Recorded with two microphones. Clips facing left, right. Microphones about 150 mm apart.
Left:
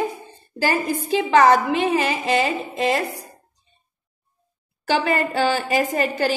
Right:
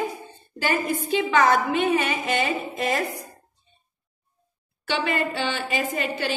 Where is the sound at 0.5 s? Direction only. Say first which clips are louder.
Left 3 dB; 35° left (ahead or behind).